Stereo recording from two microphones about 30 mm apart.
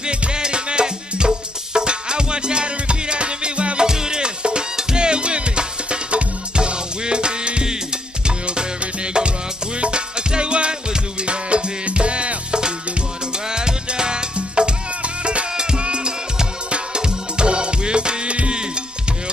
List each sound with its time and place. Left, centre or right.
0.0 s music: right
3.8 s music: right